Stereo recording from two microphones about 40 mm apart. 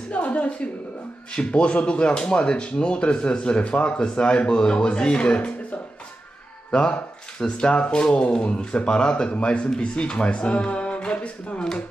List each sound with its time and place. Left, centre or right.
0.1 s a woman's voice: left
1.3 s speech: left
6.7 s speech: left